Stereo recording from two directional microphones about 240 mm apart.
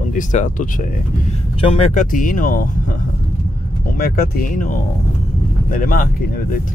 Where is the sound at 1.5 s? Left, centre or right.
Left.